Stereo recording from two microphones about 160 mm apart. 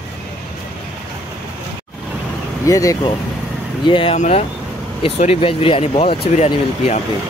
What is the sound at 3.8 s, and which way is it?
Speech, 35° left (ahead or behind).